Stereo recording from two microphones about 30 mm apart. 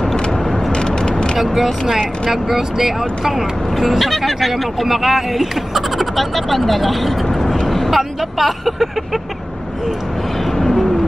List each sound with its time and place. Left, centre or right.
0.7 s vehicle: left
1.4 s speech: centre